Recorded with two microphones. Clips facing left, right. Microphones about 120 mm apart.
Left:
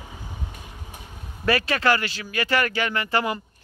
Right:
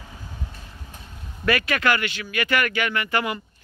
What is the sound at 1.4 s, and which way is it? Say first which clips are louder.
Speech: left 1 dB; 30° left (ahead or behind).